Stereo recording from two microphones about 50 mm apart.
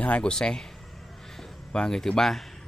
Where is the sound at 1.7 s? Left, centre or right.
Centre.